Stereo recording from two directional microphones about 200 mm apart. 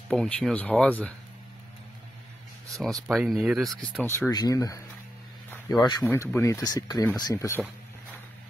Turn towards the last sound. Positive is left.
turn(degrees=15)  # may be behind; listen again after turning